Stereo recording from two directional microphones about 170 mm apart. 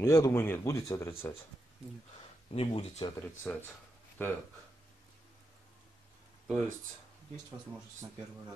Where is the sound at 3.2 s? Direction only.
10° left (ahead or behind).